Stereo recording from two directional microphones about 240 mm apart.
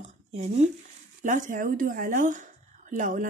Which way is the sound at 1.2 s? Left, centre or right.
Right.